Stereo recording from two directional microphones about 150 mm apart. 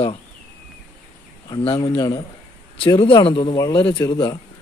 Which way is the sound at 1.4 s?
35° left (ahead or behind).